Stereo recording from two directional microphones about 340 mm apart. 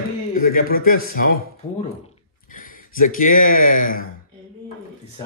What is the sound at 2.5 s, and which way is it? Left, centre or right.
Speech, left.